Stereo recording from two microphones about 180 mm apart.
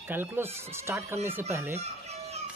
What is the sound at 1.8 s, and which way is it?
Chicken, 35° right (ahead or behind).